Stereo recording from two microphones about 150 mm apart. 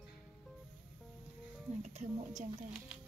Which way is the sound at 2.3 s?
5° right (ahead or behind).